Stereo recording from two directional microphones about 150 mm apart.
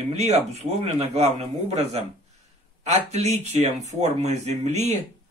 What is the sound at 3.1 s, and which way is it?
Speech, 50° right (ahead or behind).